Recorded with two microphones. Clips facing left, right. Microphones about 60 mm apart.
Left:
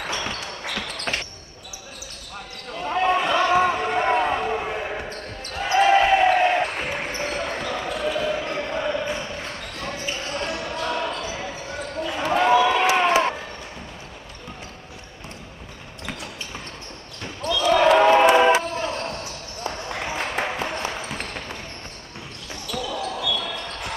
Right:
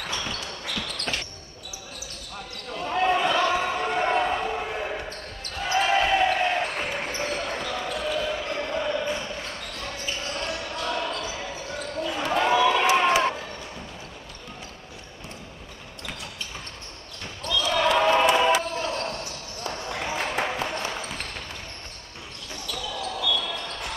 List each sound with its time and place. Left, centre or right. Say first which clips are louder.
0.0 s basketball bounce: left 3 dB; left
2.8 s a sound: left 2 dB; centre
5.8 s basketball bounce: left 5 dB; left
17.2 s basketball bounce: left 4 dB; centre
22.7 s basketball bounce: left 4 dB; centre